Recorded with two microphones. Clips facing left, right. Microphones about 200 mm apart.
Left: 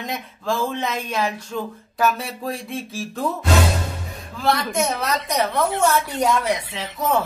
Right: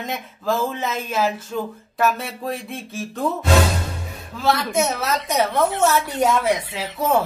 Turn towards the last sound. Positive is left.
turn(degrees=-5)  # may be behind; listen again after turning